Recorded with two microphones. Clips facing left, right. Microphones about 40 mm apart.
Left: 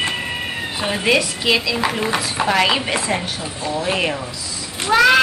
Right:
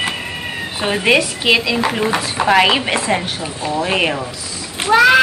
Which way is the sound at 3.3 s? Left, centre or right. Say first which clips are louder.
Right 3 dB; right.